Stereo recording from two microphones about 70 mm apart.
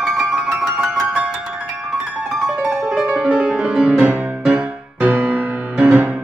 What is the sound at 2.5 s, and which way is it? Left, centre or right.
Music, centre.